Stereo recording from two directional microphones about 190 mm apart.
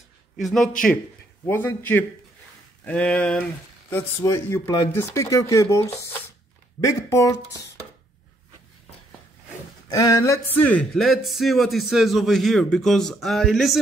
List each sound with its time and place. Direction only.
0.4 s speech: centre (ahead or behind)
1.4 s speech: 10° left (ahead or behind)
9.8 s speech: 15° left (ahead or behind); by 13.7 s centre (ahead or behind)